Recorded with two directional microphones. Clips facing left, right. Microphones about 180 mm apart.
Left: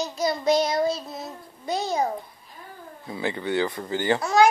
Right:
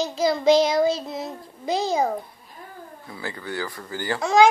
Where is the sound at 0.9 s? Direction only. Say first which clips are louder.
Right 4 dB; 25° right (ahead or behind).